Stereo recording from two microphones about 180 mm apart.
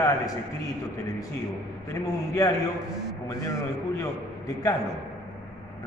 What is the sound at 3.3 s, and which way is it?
Speech, 20° left (ahead or behind).